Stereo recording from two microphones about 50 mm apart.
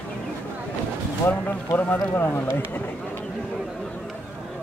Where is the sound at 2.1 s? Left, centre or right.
Left.